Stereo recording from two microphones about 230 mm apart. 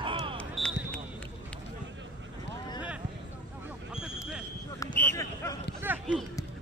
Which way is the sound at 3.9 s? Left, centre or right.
Centre.